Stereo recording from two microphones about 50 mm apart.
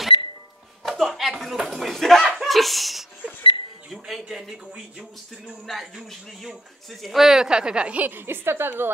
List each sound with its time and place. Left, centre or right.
0.8 s a sound: centre
2.3 s a man's voice: centre
5.7 s a man's voice: centre
8.0 s a woman's voice: right